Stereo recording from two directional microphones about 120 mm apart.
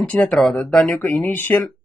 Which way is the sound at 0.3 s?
5° left (ahead or behind).